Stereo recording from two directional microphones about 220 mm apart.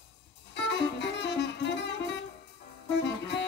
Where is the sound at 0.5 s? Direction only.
50° left (ahead or behind).